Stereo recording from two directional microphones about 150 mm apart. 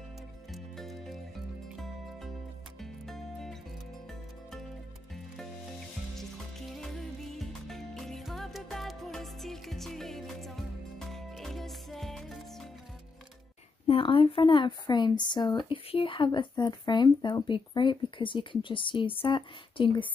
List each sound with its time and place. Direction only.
0.5 s music: centre (ahead or behind)
6.8 s music: centre (ahead or behind)
13.8 s speech: 35° left (ahead or behind)